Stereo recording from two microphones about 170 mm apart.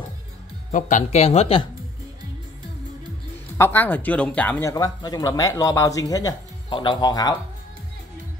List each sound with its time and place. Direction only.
0.7 s speech: 45° left (ahead or behind)
3.5 s speech: 15° left (ahead or behind)